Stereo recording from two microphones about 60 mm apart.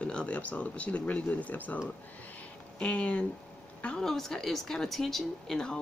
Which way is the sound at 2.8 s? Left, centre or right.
Left.